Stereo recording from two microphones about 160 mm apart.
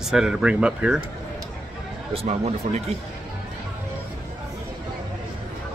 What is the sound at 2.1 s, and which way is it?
Speech, 40° right (ahead or behind).